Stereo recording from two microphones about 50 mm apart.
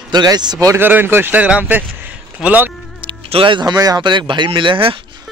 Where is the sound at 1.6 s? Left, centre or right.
Right.